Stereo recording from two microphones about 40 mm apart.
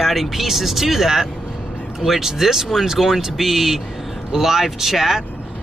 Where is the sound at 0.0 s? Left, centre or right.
Centre.